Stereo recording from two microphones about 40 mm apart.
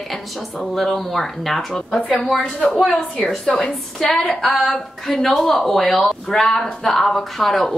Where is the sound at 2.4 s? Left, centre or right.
Left.